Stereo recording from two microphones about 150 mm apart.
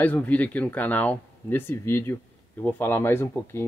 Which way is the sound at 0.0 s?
10° left (ahead or behind).